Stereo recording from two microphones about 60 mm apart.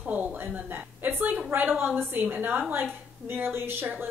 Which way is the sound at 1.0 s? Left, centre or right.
Right.